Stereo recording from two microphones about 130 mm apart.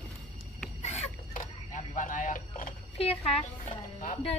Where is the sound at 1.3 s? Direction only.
85° left.